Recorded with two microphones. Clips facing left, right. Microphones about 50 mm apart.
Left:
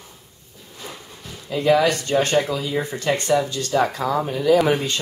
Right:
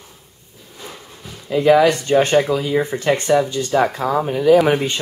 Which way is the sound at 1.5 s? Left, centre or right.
Centre.